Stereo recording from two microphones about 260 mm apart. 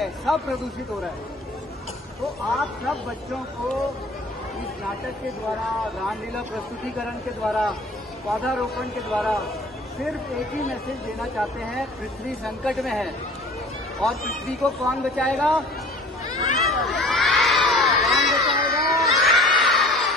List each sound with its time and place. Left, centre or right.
0.0 s speech: centre
2.5 s speech: centre
7.4 s speech: centre
10.9 s speech: centre
14.3 s speech: centre
16.6 s crowd: centre
18.6 s a sound: left
19.0 s a sound: centre